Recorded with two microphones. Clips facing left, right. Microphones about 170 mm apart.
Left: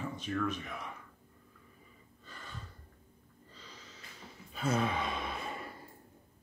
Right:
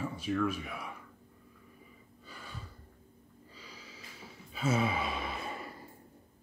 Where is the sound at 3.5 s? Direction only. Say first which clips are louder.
Right 2 dB; 10° right (ahead or behind).